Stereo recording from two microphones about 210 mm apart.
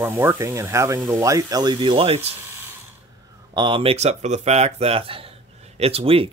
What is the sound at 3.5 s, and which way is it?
Speech, 20° right (ahead or behind).